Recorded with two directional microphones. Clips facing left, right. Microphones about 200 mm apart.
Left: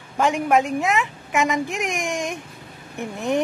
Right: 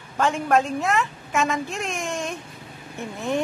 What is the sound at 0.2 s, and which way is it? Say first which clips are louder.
A woman's voice: left 2 dB; 15° left (ahead or behind).